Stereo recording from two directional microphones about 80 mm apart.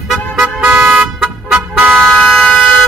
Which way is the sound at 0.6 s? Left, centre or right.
Centre.